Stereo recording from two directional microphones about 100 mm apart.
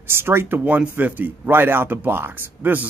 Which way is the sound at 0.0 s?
25° right (ahead or behind).